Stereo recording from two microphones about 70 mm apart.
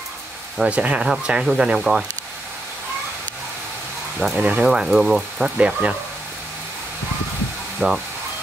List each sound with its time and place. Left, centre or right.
0.7 s speech: centre
4.4 s speech: right
4.6 s speech: centre
5.6 s speech: centre
7.8 s speech: centre